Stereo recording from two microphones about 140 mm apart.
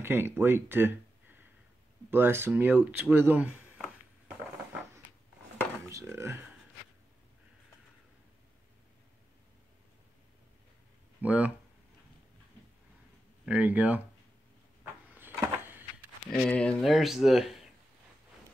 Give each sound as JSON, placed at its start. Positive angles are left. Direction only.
{"t": 0.0, "sound": "speech", "side_deg": -15}
{"t": 5.9, "sound": "speech", "side_deg": -20}
{"t": 11.1, "sound": "speech", "side_deg": -10}
{"t": 13.5, "sound": "speech", "side_deg": -10}
{"t": 15.1, "sound": "a sound", "side_deg": -15}
{"t": 16.3, "sound": "speech", "side_deg": 5}